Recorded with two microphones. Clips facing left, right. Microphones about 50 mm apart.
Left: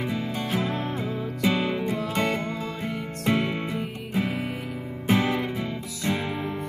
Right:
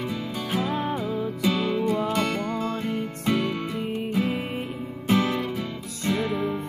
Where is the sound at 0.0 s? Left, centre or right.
Centre.